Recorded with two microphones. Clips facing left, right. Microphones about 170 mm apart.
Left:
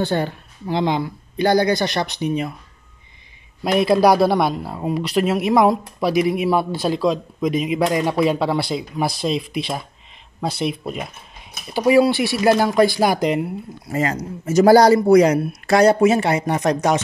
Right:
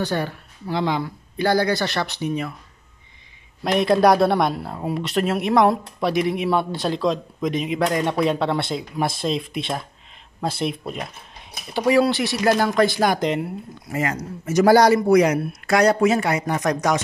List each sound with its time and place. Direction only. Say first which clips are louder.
0.0 s speech: left 3 dB; 25° left (ahead or behind)
3.6 s speech: left 2 dB; 5° left (ahead or behind)
13.9 s speech: left 3 dB; 30° left (ahead or behind)